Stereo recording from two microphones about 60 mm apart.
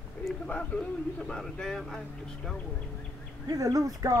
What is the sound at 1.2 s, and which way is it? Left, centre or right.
Speech, centre.